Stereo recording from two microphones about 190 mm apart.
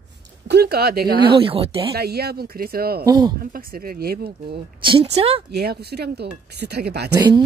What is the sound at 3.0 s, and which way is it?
Speech, 25° right (ahead or behind).